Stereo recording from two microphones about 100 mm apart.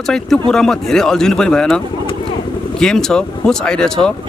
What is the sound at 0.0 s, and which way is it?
Speech, 5° left (ahead or behind).